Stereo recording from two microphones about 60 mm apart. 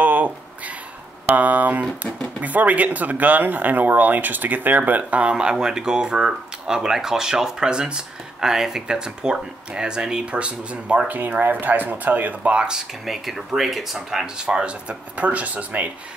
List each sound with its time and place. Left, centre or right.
0.0 s a sound: right
1.2 s speech: right
11.1 s speech: right; by 12.8 s centre
13.0 s speech: centre; by 15.9 s right